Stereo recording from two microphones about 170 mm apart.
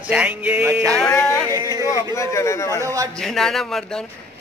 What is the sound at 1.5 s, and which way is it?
Speech, 20° right (ahead or behind).